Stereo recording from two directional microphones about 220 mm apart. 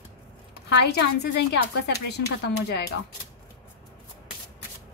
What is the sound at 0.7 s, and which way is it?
A woman's voice, 50° left (ahead or behind).